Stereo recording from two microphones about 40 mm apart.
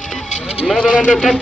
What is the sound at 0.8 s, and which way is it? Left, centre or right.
Speech, left.